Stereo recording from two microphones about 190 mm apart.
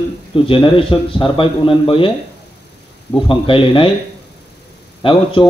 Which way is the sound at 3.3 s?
25° left (ahead or behind).